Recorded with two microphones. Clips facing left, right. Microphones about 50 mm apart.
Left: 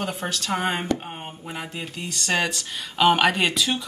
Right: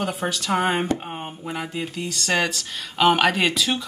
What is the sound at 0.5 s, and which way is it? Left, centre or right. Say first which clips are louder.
Speech: right 3 dB; centre.